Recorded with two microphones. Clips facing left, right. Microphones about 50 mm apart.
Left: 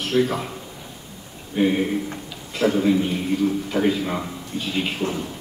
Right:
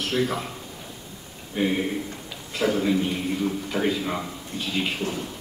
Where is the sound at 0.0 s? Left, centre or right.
Centre.